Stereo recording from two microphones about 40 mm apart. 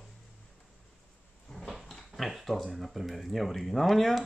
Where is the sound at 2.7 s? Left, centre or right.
Centre.